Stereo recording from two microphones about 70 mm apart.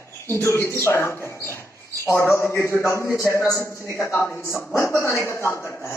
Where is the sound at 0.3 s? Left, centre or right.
Left.